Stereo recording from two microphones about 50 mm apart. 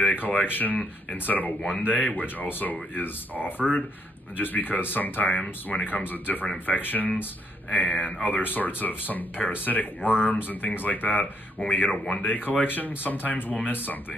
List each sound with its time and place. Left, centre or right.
0.0 s speech: left